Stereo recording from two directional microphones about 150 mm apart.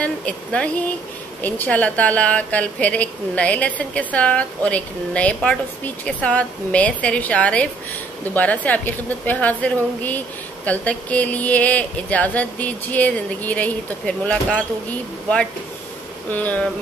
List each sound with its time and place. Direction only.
0.0 s a woman's voice: 10° left (ahead or behind)
16.3 s a woman's voice: 10° left (ahead or behind)